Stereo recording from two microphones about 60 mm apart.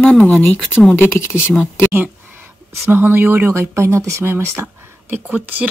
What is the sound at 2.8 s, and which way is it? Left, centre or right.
Speech, right.